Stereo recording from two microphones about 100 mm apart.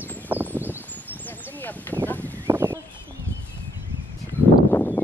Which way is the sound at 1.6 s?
20° left (ahead or behind).